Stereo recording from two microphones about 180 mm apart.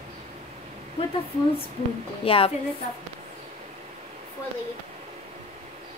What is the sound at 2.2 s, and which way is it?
Speech, 30° left (ahead or behind).